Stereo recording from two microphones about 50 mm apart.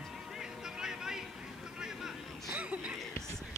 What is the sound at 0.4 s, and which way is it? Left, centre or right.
Music, centre.